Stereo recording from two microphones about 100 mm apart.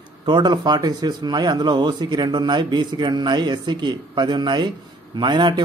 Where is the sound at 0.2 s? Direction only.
50° right (ahead or behind).